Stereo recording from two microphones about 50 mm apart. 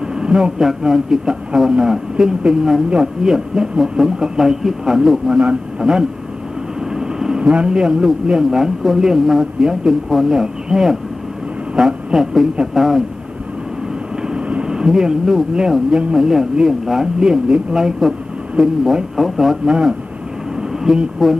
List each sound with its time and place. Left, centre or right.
0.1 s speech: centre
5.4 s a man's voice: right
6.9 s speech: centre
14.2 s a sound: centre
16.2 s a man's voice: centre
20.9 s a man's voice: centre